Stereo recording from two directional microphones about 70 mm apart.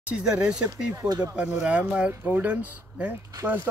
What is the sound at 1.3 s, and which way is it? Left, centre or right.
Speech, centre.